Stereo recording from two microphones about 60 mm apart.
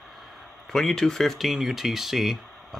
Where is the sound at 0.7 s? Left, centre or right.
Centre.